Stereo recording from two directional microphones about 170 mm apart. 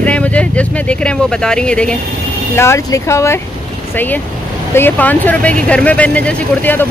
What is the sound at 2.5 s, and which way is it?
Speech, 15° left (ahead or behind).